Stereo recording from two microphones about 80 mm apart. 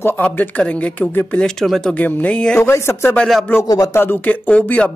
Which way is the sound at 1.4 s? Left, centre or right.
Centre.